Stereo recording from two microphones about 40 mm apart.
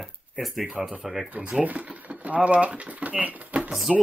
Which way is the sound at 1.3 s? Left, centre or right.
Right.